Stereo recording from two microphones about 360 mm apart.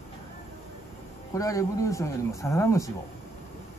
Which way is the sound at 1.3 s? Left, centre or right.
Centre.